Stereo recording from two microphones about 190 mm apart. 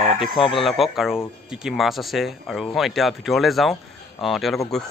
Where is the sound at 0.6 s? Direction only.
Centre (ahead or behind).